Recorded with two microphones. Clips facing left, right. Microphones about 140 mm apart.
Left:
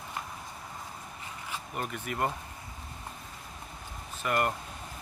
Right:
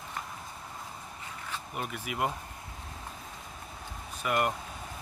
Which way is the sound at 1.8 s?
5° right (ahead or behind).